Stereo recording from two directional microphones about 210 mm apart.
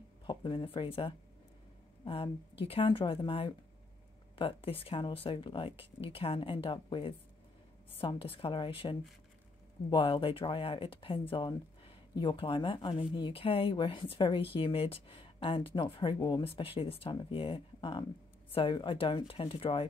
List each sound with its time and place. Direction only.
0.3 s speech: 25° left (ahead or behind)